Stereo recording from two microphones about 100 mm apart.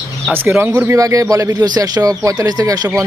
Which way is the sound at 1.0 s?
35° right (ahead or behind).